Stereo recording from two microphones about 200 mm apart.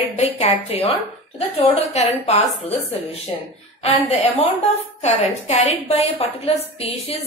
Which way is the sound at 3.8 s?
35° left (ahead or behind).